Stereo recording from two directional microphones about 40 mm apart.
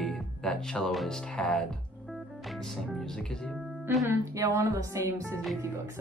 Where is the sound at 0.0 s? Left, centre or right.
Centre.